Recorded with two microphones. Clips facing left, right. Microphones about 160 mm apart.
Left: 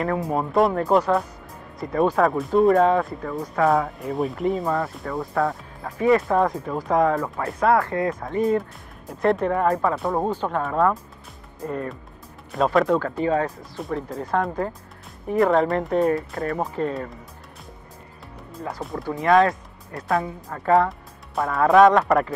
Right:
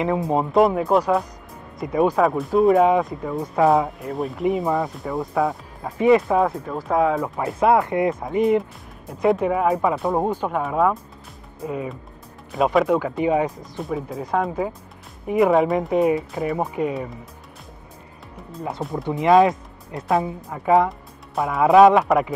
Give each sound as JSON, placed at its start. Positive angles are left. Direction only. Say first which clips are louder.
{"t": 0.0, "sound": "speech", "louder": "right 3 dB", "side_deg": -15}
{"t": 0.5, "sound": "speech", "louder": "right 1 dB", "side_deg": 0}
{"t": 2.8, "sound": "speech", "louder": "right 2 dB", "side_deg": -15}
{"t": 4.0, "sound": "speech", "louder": "left 1 dB", "side_deg": 0}
{"t": 4.5, "sound": "speech", "louder": "right 5 dB", "side_deg": -15}
{"t": 6.2, "sound": "speech", "louder": "right 1 dB", "side_deg": -5}
{"t": 7.6, "sound": "speech", "louder": "right 2 dB", "side_deg": -20}
{"t": 13.2, "sound": "speech", "louder": "right 2 dB", "side_deg": -15}
{"t": 13.7, "sound": "speech", "louder": "right 1 dB", "side_deg": 0}
{"t": 16.2, "sound": "speech", "louder": "right 2 dB", "side_deg": 0}
{"t": 18.6, "sound": "speech", "louder": "right 3 dB", "side_deg": -25}